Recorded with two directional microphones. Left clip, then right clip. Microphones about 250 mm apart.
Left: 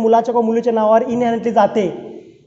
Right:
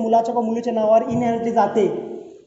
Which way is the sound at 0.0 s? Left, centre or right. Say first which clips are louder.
Left 4 dB; left.